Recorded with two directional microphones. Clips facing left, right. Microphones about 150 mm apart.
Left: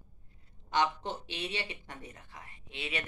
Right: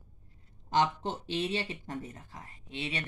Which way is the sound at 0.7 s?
40° right (ahead or behind).